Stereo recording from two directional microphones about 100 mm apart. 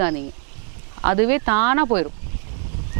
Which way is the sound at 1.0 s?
15° right (ahead or behind).